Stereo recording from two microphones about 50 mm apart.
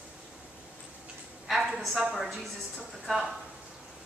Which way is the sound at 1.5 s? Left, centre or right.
Centre.